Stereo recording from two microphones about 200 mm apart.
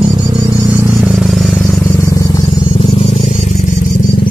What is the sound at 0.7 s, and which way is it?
Vehicle, 15° right (ahead or behind).